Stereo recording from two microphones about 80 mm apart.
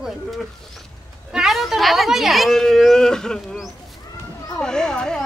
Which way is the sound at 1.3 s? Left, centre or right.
Centre.